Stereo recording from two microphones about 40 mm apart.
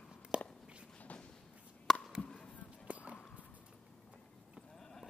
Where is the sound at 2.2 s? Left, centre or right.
Centre.